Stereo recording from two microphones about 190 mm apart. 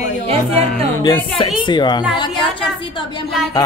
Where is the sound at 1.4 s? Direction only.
25° left (ahead or behind).